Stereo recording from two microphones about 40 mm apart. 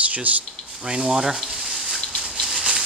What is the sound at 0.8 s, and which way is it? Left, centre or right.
Speech, centre.